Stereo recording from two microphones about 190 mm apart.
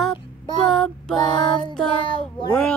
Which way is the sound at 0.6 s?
Centre (ahead or behind).